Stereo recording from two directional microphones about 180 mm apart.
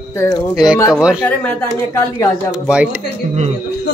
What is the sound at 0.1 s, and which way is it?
Speech, 15° left (ahead or behind).